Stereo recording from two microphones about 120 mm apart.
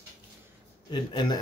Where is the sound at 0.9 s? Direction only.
35° left (ahead or behind).